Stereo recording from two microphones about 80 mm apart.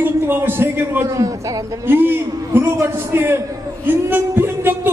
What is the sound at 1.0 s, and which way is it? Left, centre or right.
Speech, right.